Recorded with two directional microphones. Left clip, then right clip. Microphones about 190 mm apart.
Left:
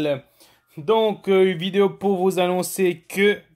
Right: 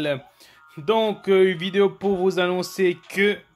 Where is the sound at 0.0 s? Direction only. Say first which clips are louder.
Left 2 dB; 10° right (ahead or behind).